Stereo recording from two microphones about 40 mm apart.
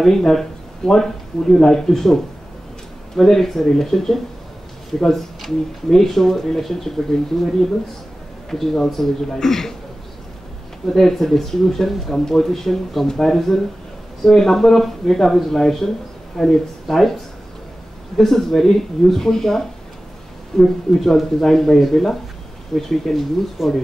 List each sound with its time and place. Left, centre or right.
0.0 s speech: centre
11.0 s speech: centre
18.1 s speech: centre
23.6 s speech: centre